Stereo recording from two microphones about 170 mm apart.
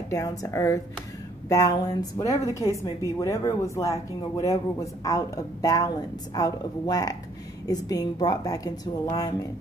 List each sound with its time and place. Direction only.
0.1 s speech: 20° left (ahead or behind)